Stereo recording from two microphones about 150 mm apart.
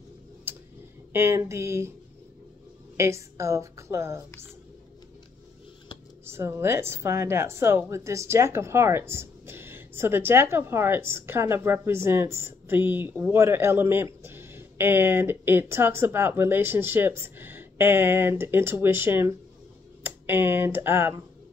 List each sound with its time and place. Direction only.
1.1 s speech: 15° right (ahead or behind)
3.0 s a woman's voice: 20° right (ahead or behind)
6.2 s speech: 15° right (ahead or behind)